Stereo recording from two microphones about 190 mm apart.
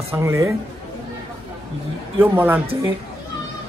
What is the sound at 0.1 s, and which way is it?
Speech, 15° right (ahead or behind).